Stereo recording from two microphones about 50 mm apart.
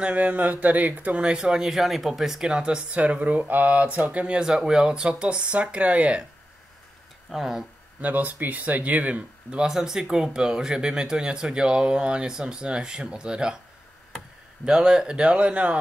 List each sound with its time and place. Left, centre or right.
0.0 s speech: right
4.4 s speech: centre
7.2 s speech: centre
8.0 s speech: right
9.5 s speech: centre